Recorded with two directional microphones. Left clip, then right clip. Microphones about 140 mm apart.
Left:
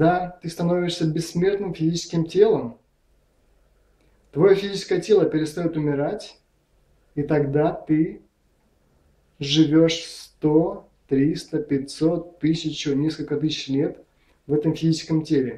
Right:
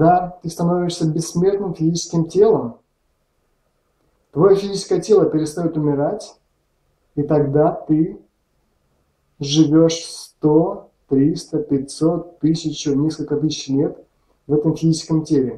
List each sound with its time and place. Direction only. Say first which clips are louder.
0.0 s speech: right 6 dB; 15° left (ahead or behind)
4.3 s speech: right 3 dB; 15° left (ahead or behind)
9.8 s speech: right 3 dB; 15° left (ahead or behind)